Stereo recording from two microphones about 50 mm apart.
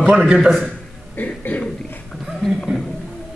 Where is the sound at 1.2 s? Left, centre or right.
Left.